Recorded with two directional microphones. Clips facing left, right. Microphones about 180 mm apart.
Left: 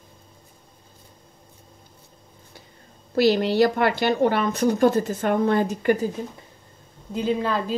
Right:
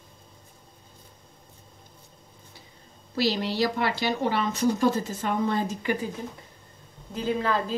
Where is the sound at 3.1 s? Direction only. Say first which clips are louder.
Left 7 dB; 55° left (ahead or behind).